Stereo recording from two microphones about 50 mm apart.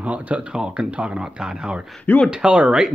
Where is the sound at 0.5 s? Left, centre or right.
Centre.